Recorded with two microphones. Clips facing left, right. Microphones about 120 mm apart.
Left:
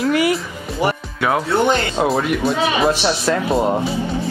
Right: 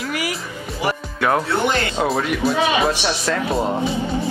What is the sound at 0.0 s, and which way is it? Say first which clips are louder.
Music: left 9 dB; 30° left (ahead or behind).